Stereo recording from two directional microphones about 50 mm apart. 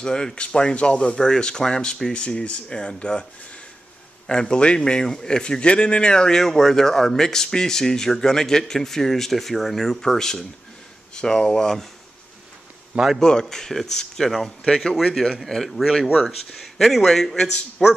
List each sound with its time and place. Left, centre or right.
0.0 s speech: centre
4.3 s speech: centre
13.2 s speech: centre
14.7 s speech: centre